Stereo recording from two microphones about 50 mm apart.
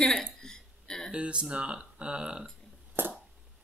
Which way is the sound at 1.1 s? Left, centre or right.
Right.